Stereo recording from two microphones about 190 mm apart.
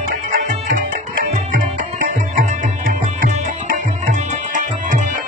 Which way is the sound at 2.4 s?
45° right (ahead or behind).